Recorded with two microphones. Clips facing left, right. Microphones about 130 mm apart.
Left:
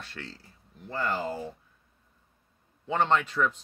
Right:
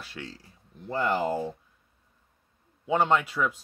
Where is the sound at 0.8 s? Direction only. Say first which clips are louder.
Right 4 dB; 20° right (ahead or behind).